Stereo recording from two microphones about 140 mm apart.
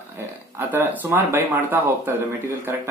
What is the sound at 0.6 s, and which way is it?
Speech, 15° right (ahead or behind).